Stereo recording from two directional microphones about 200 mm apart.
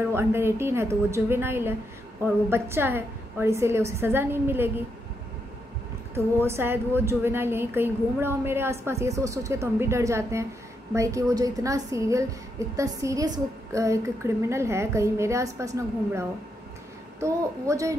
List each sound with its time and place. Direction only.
0.0 s a woman's voice: 10° right (ahead or behind)
6.1 s a woman's voice: 10° right (ahead or behind)